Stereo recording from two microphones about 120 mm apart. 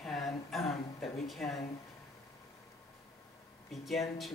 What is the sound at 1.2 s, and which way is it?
Speech, centre (ahead or behind).